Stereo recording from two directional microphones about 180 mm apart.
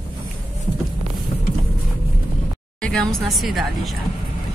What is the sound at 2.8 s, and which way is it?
A woman's voice, 5° left (ahead or behind).